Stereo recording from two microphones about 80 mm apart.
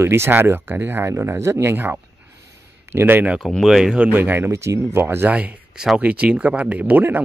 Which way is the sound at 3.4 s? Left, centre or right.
Centre.